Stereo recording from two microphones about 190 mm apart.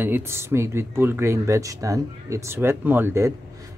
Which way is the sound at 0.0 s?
10° right (ahead or behind).